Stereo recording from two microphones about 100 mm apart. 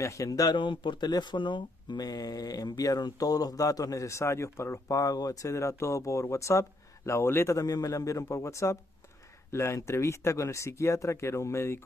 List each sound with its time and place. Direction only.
0.0 s speech: 35° left (ahead or behind)
0.6 s speech: 50° left (ahead or behind); by 11.8 s 25° left (ahead or behind)